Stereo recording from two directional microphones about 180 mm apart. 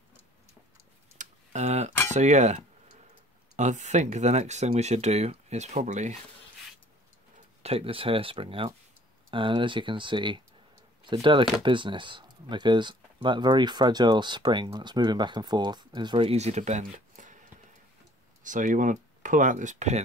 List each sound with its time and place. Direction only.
1.1 s a sound: 40° right (ahead or behind)
2.1 s speech: 40° right (ahead or behind)
7.3 s speech: 35° right (ahead or behind)